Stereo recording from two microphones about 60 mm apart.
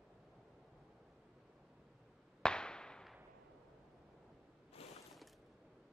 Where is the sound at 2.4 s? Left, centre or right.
Centre.